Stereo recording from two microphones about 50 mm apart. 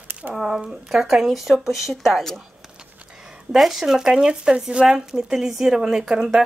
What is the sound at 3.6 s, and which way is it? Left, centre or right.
Speech, centre.